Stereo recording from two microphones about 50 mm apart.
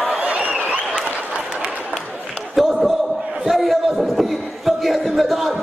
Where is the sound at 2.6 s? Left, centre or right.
Centre.